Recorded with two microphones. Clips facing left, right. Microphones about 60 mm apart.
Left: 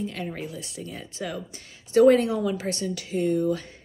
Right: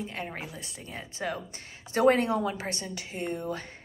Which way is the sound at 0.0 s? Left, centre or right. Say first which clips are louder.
Left 4 dB; right.